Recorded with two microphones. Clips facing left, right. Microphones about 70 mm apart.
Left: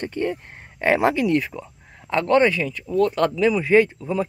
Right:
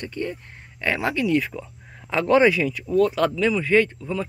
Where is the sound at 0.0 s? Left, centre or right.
Left.